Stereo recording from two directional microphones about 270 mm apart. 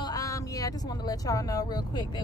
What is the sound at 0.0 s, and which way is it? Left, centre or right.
Speech, centre.